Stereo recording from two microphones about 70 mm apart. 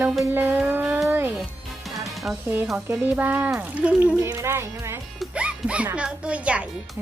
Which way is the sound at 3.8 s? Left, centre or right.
Centre.